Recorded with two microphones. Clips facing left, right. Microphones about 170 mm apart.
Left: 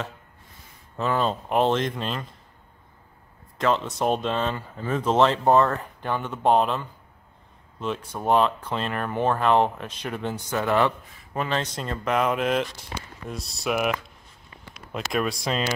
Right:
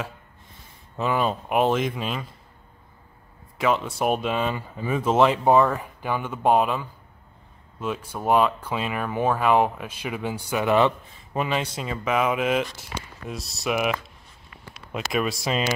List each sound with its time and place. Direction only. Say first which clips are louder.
0.9 s speech: right 1 dB; 10° right (ahead or behind)
3.5 s speech: even; 10° right (ahead or behind)